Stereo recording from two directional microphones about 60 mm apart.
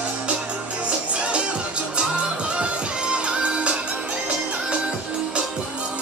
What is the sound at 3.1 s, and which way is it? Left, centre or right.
Music, centre.